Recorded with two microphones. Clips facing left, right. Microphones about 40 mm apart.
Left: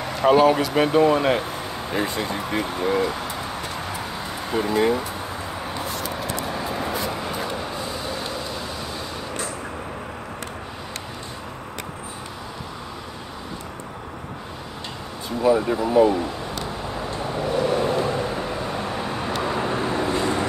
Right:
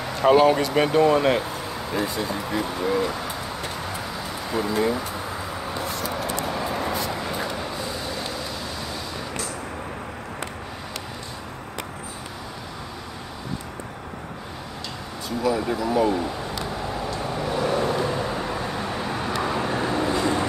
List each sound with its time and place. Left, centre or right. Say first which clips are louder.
0.0 s speech: even; centre
2.0 s speech: left 1 dB; left
4.6 s speech: left 3 dB; left
6.4 s vehicle: right 1 dB; centre
7.1 s vehicle: left 1 dB; centre
15.2 s speech: left 4 dB; left
15.9 s speech: left 5 dB; centre
17.3 s vehicle: left 3 dB; centre